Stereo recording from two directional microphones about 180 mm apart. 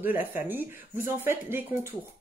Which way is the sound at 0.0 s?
10° right (ahead or behind).